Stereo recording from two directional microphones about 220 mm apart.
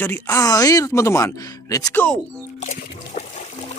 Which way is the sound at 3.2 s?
30° left (ahead or behind).